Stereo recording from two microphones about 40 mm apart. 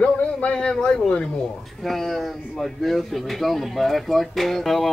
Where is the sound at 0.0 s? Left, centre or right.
Left.